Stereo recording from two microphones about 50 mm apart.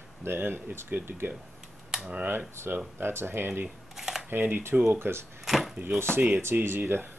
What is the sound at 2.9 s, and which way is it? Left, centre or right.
Speech, right.